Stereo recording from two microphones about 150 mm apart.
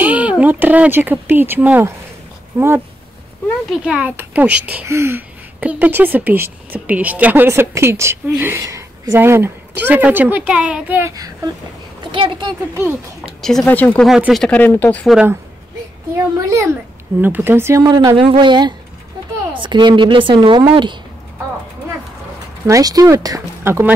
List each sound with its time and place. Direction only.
0.0 s speech: 10° right (ahead or behind)
3.8 s a child's voice: 10° right (ahead or behind); by 12.4 s 35° right (ahead or behind)
13.4 s speech: 5° left (ahead or behind)
14.0 s speech: centre (ahead or behind)
16.3 s a woman's voice: 20° right (ahead or behind)
22.7 s speech: 25° right (ahead or behind)